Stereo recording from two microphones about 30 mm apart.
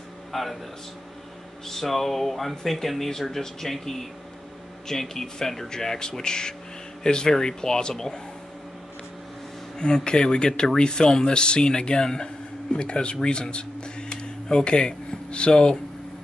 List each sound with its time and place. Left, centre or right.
0.3 s a man's voice: centre
1.7 s a sound: centre
2.6 s speech: centre
4.8 s speech: centre
9.8 s speech: left
12.7 s speech: left
15.5 s speech: left